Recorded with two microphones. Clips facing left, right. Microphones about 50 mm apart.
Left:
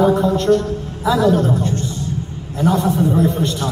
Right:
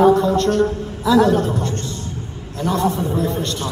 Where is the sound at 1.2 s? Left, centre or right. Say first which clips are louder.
Left 1 dB; right.